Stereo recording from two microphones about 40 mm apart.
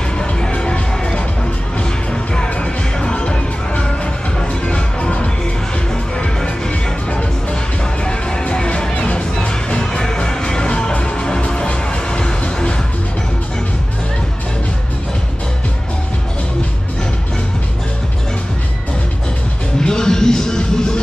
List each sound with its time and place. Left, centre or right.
0.6 s music: left
2.3 s music: left
8.0 s music: left
19.8 s music: centre